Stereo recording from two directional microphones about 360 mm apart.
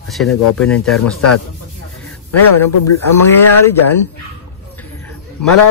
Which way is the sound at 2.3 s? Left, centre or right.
Left.